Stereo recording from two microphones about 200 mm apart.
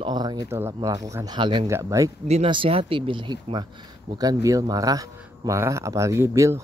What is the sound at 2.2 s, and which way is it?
Speech, 30° right (ahead or behind).